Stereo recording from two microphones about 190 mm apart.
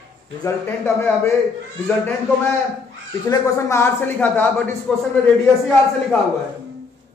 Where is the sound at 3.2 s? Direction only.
15° left (ahead or behind).